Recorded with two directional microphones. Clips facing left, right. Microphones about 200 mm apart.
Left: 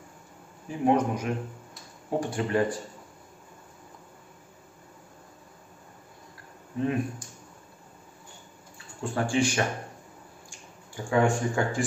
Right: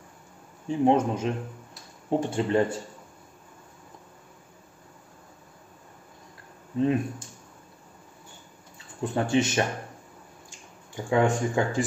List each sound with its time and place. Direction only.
0.7 s speech: 25° right (ahead or behind)
6.8 s speech: 25° right (ahead or behind)
9.0 s speech: 20° right (ahead or behind)
11.1 s speech: 20° right (ahead or behind)